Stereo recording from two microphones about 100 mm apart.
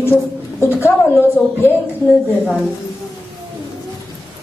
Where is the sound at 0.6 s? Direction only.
25° left (ahead or behind).